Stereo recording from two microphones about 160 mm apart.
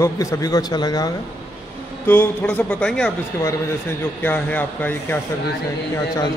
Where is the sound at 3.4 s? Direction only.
20° left (ahead or behind).